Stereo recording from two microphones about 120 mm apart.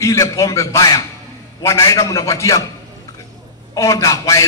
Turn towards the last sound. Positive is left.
turn(degrees=25)  # may be behind; listen again after turning